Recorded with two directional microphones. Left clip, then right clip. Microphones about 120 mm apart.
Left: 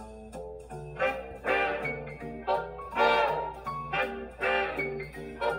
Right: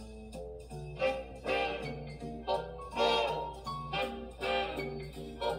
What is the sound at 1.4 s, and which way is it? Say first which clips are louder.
Music: left 6 dB; 25° right (ahead or behind).